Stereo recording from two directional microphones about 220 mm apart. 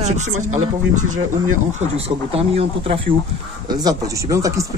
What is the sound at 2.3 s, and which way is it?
Speech, 25° right (ahead or behind).